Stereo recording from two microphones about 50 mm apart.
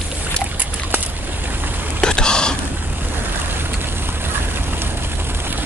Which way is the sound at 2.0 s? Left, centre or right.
Centre.